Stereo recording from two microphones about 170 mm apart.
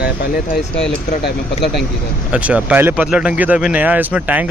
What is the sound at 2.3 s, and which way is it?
Speech, 5° right (ahead or behind).